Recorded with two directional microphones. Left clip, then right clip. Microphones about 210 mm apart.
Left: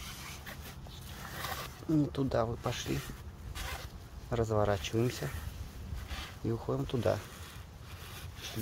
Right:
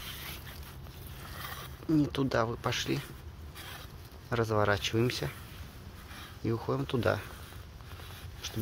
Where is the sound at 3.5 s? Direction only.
60° left (ahead or behind).